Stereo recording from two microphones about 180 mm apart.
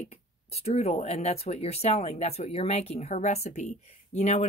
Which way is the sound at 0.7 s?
35° left (ahead or behind).